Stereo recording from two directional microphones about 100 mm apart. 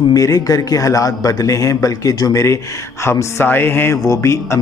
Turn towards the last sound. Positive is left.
turn(degrees=30)  # may be behind; listen again after turning